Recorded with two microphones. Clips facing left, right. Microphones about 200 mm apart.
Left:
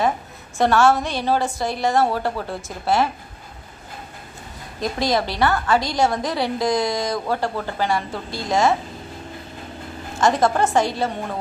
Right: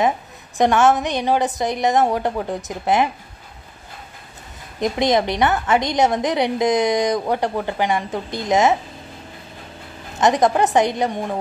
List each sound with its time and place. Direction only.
0.6 s a woman's voice: 20° right (ahead or behind)
4.7 s a woman's voice: 20° right (ahead or behind)
10.1 s a woman's voice: 20° right (ahead or behind)